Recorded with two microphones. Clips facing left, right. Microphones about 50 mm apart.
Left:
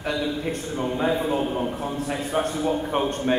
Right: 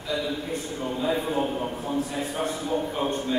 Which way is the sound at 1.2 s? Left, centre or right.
Left.